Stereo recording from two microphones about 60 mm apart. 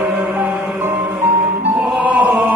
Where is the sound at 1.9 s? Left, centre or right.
Right.